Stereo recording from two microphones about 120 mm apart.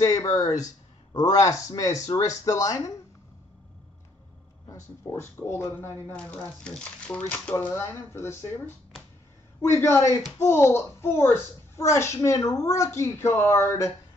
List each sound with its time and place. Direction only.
0.0 s speech: 30° left (ahead or behind)
4.6 s speech: 20° left (ahead or behind)